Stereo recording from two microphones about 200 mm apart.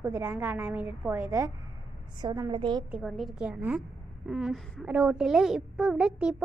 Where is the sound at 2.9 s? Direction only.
Centre (ahead or behind).